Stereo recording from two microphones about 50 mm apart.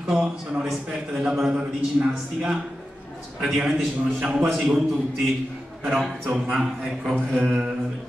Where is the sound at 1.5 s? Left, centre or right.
Centre.